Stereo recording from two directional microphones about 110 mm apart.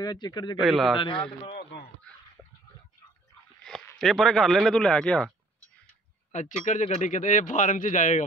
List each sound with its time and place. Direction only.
0.0 s speech: 40° left (ahead or behind)
0.6 s speech: centre (ahead or behind)
0.9 s a man's voice: 50° left (ahead or behind)
3.7 s a sound: 5° left (ahead or behind)
4.0 s speech: centre (ahead or behind)
6.3 s speech: 90° left